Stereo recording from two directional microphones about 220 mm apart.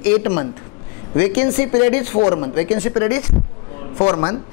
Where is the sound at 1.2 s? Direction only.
15° left (ahead or behind).